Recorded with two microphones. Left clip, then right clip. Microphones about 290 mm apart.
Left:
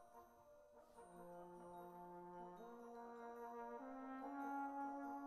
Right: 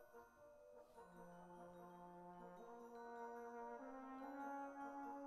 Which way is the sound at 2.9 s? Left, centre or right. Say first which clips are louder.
Right 2 dB; centre.